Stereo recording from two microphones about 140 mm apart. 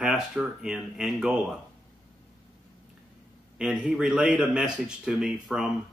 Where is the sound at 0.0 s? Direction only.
5° right (ahead or behind).